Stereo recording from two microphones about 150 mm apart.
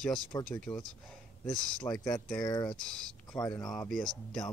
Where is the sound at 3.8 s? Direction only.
5° left (ahead or behind).